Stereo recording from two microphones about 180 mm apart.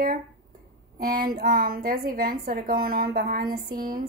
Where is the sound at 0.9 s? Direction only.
55° right (ahead or behind).